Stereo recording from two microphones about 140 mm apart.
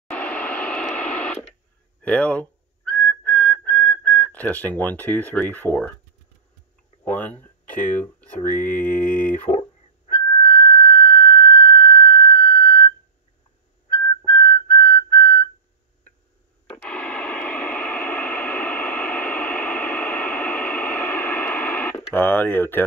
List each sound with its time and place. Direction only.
0.1 s radio: 10° left (ahead or behind)
2.0 s speech: 10° left (ahead or behind)
2.9 s whistling: 10° left (ahead or behind)
7.2 s speech: 10° left (ahead or behind)
10.1 s whistling: 25° left (ahead or behind)
16.8 s radio: 10° left (ahead or behind)
22.1 s a sound: 15° left (ahead or behind)